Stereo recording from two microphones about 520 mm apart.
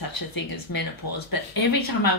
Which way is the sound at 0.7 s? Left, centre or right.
Left.